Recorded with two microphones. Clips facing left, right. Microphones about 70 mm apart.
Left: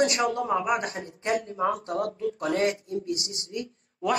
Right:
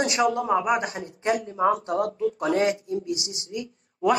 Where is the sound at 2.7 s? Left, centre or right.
Left.